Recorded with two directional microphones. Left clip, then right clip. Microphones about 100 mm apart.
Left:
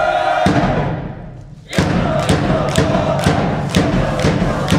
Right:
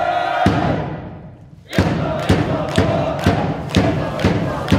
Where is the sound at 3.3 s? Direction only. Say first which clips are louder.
Left 2 dB; 20° left (ahead or behind).